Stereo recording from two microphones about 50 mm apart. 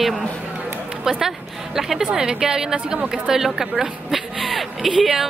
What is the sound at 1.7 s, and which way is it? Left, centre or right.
A woman's voice, centre.